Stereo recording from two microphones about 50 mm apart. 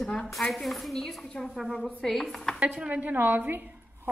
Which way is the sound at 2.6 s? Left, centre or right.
Right.